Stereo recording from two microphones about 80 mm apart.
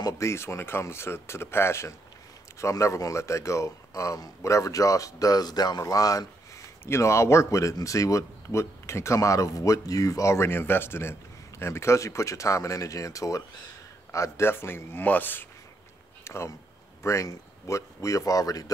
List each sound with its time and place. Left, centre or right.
0.2 s speech: left
6.9 s a man's voice: left
16.3 s speech: left